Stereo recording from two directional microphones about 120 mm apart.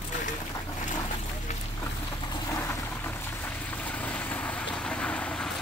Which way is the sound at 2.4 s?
25° left (ahead or behind).